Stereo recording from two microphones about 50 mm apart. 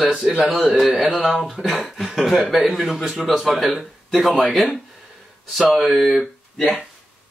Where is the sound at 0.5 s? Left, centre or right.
Centre.